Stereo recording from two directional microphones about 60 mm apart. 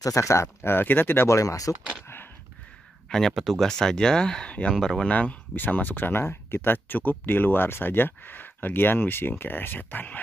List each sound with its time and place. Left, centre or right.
0.0 s speech: left
1.3 s speech: left
3.1 s speech: centre
5.1 s speech: left